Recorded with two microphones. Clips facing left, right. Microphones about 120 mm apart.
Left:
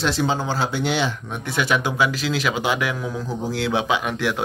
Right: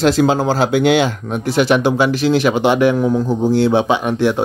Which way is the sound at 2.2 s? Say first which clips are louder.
Right 9 dB; 60° right (ahead or behind).